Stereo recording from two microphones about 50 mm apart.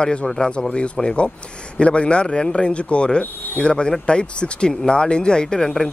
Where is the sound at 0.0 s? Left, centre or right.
Left.